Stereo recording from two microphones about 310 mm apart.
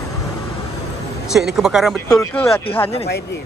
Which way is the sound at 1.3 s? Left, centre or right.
Centre.